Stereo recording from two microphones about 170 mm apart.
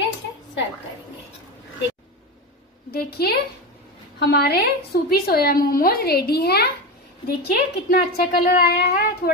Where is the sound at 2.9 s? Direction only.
65° left (ahead or behind).